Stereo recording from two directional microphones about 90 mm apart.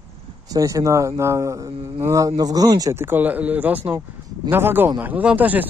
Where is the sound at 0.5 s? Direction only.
40° right (ahead or behind).